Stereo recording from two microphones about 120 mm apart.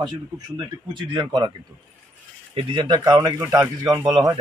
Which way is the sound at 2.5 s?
40° right (ahead or behind).